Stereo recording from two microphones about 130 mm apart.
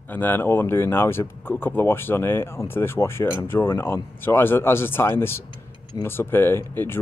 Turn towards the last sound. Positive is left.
turn(degrees=15)  # may be behind; listen again after turning